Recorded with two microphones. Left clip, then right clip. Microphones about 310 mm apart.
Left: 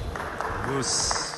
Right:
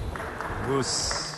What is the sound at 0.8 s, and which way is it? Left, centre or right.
Speech, centre.